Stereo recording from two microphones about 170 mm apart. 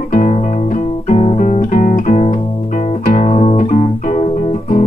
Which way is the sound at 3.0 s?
45° left (ahead or behind).